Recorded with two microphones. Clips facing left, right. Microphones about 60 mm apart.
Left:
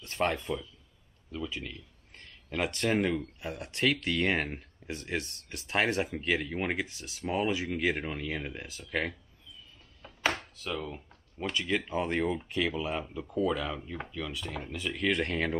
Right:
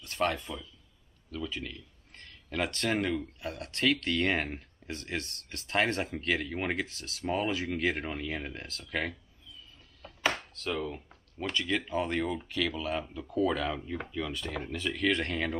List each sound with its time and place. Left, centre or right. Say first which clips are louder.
0.2 s speech: even; left
1.3 s speech: even; centre
4.8 s speech: left 2 dB; centre
10.0 s chopping: even; centre
10.7 s speech: right 2 dB; centre
11.4 s speech: even; centre
13.5 s speech: right 1 dB; centre